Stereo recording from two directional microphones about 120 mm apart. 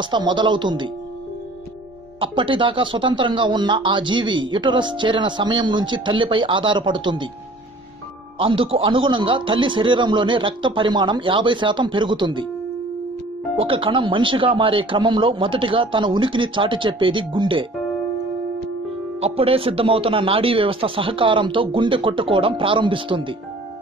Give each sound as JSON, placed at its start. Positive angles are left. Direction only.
{"t": 0.0, "sound": "speech", "side_deg": -40}
{"t": 2.1, "sound": "speech", "side_deg": -45}
{"t": 8.4, "sound": "speech", "side_deg": -45}
{"t": 13.6, "sound": "speech", "side_deg": -50}
{"t": 19.1, "sound": "speech", "side_deg": -55}